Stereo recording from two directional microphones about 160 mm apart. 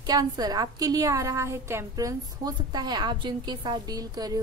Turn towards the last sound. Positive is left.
turn(degrees=-25)  # may be behind; listen again after turning